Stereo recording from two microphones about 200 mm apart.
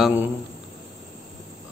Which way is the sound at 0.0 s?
10° right (ahead or behind).